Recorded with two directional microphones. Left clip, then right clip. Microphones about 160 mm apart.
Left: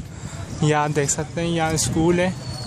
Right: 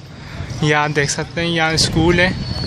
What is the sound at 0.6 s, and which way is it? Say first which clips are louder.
Speech: right 4 dB; 10° left (ahead or behind).